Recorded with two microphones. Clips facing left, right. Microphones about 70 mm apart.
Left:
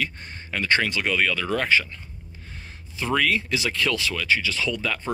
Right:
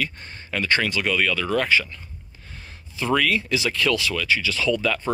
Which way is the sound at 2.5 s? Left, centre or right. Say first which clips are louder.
Right 1 dB; left.